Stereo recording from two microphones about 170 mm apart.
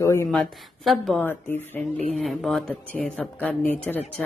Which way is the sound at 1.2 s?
10° left (ahead or behind).